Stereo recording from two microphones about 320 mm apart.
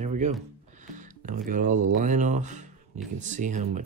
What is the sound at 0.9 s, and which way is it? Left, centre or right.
Music, right.